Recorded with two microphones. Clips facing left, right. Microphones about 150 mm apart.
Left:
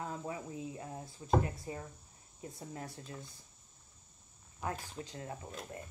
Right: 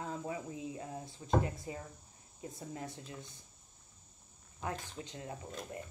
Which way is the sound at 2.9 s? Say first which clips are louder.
Even; 20° right (ahead or behind).